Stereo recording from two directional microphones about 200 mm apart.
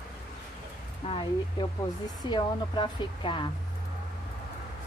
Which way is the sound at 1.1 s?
25° left (ahead or behind).